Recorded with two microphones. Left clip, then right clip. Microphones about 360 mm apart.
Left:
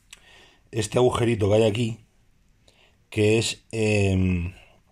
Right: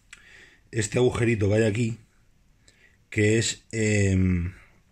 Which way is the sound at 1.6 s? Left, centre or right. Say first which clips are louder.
Left 3 dB; centre.